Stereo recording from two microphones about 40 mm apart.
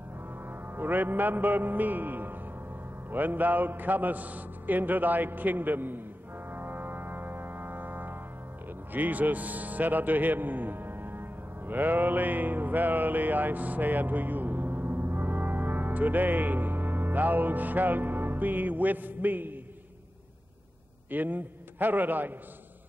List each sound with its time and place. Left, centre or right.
0.5 s music: right
3.1 s a man's voice: right
6.5 s music: right
8.9 s a man's voice: right
21.1 s a man's voice: right